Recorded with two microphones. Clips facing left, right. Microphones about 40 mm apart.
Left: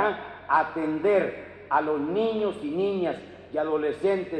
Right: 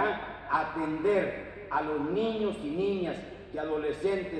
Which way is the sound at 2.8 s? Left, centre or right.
Left.